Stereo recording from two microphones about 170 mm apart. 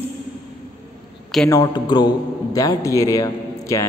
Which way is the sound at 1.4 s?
20° left (ahead or behind).